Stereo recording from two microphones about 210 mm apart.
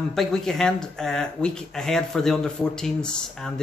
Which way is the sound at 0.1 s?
Centre (ahead or behind).